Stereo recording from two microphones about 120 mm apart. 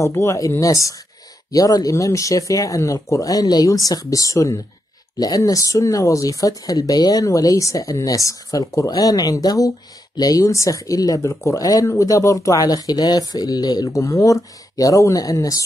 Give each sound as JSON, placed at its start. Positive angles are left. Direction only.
{"t": 0.0, "sound": "speech", "side_deg": 25}